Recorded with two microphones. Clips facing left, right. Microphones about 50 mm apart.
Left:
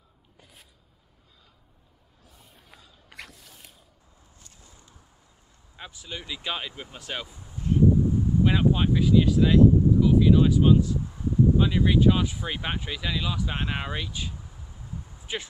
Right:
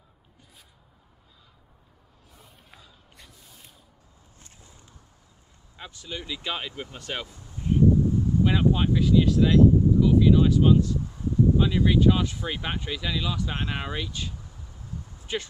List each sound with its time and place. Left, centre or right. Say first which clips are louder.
3.1 s boat: left 8 dB; left
5.8 s speech: right 1 dB; centre
7.5 s a sound: even; centre
8.1 s speech: even; centre